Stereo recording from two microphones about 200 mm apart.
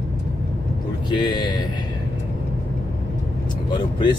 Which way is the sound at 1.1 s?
20° left (ahead or behind).